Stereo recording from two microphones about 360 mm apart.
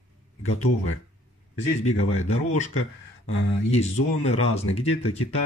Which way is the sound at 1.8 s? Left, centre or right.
Left.